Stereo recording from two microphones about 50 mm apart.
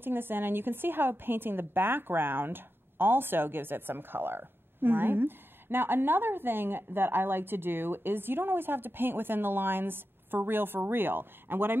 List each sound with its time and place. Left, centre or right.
0.0 s a woman's voice: right